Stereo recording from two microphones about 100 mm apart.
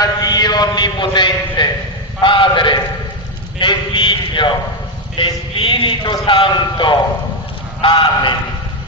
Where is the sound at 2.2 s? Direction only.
55° left (ahead or behind).